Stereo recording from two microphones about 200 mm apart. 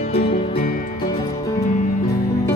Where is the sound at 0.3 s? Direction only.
30° left (ahead or behind).